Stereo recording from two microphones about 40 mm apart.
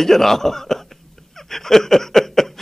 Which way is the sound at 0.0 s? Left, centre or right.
Centre.